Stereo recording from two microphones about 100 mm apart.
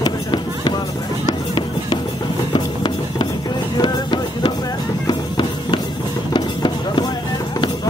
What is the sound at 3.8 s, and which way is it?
Music, 45° left (ahead or behind).